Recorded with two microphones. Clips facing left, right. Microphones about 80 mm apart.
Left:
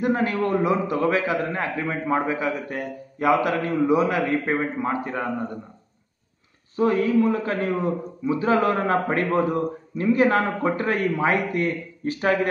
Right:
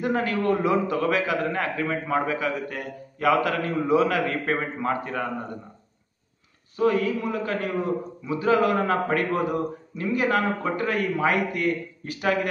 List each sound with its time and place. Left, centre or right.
0.0 s a man's voice: left
6.8 s a man's voice: left